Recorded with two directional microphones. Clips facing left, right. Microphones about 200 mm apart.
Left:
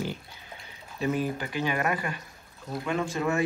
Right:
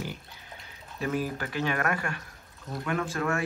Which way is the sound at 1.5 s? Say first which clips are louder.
Right 1 dB; 5° left (ahead or behind).